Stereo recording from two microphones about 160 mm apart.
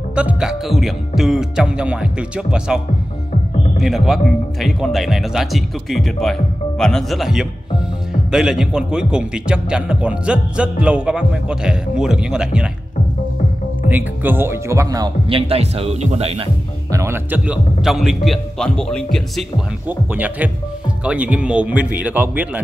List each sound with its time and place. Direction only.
0.1 s a man's voice: 5° right (ahead or behind)
13.8 s speech: 10° right (ahead or behind)
15.2 s speech: 35° right (ahead or behind)
16.9 s a man's voice: 15° right (ahead or behind); by 19.4 s centre (ahead or behind)
19.9 s speech: 10° right (ahead or behind)